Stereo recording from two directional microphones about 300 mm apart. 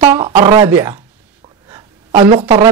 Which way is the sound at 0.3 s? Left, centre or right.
Centre.